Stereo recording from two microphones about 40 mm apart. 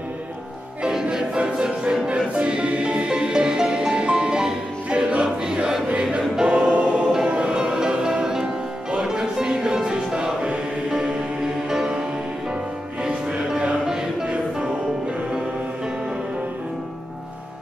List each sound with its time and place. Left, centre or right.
1.1 s choir: right
2.3 s music: right
5.2 s choir: centre
6.7 s music: right; by 12.0 s centre
13.0 s music: centre